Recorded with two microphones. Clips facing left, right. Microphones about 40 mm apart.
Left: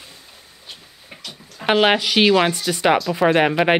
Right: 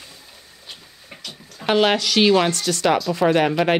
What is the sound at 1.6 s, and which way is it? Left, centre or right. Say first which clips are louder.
Speech: left 2 dB; centre.